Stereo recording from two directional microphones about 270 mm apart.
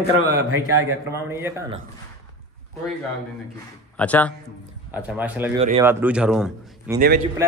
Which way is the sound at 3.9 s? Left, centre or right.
Centre.